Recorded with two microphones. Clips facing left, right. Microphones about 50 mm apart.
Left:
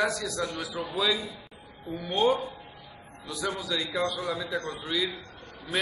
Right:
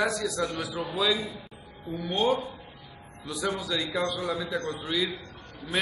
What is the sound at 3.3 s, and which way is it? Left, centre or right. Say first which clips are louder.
A man's voice: right 1 dB; centre.